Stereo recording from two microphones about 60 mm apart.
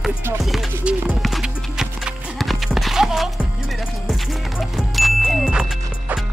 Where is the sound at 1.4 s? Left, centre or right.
Centre.